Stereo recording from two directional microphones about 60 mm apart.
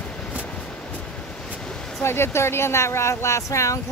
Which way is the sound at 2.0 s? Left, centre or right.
Left.